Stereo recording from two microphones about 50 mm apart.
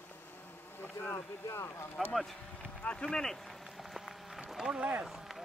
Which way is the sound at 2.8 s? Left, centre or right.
Left.